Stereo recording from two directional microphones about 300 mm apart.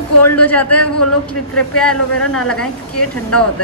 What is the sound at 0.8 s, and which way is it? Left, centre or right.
Speech, left.